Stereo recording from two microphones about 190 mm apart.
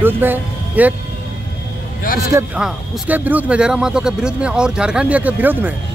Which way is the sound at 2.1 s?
45° left (ahead or behind).